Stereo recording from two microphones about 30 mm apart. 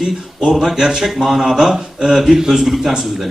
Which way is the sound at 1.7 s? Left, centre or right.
Right.